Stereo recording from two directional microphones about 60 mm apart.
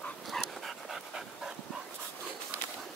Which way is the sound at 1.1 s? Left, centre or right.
Centre.